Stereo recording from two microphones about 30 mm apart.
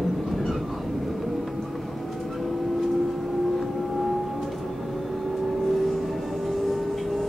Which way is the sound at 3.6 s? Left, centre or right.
Centre.